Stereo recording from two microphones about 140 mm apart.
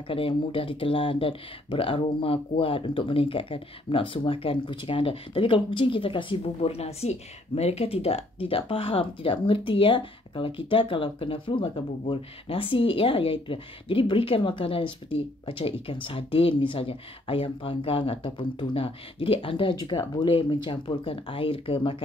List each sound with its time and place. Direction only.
0.1 s speech: 40° left (ahead or behind)